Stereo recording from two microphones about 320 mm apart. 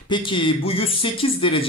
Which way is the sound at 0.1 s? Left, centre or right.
Centre.